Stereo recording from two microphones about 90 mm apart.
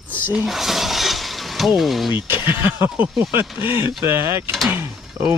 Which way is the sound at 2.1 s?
25° right (ahead or behind).